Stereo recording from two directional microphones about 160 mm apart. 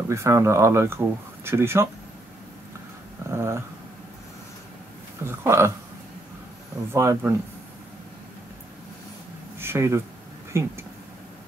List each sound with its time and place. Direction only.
0.1 s speech: 20° right (ahead or behind)
3.3 s dog: 15° right (ahead or behind)
5.2 s speech: 15° right (ahead or behind)
6.9 s speech: 15° right (ahead or behind)
9.6 s speech: 15° right (ahead or behind)